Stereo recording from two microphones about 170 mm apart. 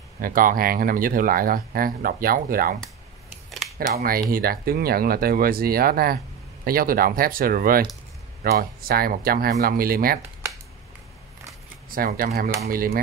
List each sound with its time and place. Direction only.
0.2 s speech: 55° right (ahead or behind)
3.7 s speech: 60° right (ahead or behind)
11.9 s speech: 55° right (ahead or behind)